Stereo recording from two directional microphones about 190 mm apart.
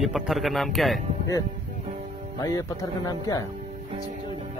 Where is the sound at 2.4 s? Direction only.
20° left (ahead or behind).